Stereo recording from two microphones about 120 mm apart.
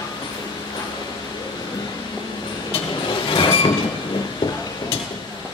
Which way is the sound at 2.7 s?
45° left (ahead or behind).